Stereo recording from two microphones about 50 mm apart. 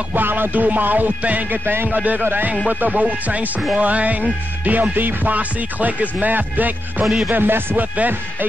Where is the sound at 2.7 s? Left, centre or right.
Right.